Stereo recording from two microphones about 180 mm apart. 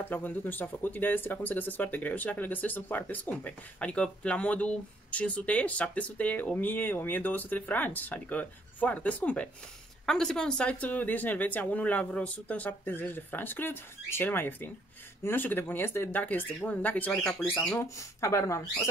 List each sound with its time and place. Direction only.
0.0 s speech: 10° left (ahead or behind)